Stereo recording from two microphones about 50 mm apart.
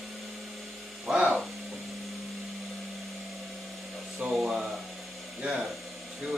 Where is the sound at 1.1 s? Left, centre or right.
Right.